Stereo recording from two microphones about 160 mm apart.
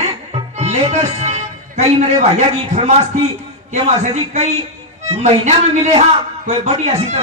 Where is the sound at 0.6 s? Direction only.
45° right (ahead or behind).